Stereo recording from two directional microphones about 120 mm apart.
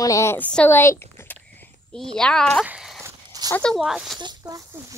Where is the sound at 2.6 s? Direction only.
5° right (ahead or behind).